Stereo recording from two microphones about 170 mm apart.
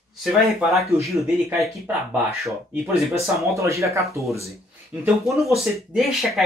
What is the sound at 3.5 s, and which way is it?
Speech, 15° right (ahead or behind).